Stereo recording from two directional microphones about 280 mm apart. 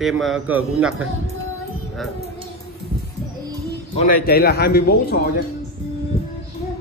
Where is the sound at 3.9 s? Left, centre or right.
Left.